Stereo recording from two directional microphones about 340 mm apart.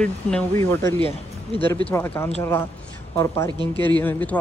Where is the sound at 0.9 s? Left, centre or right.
Centre.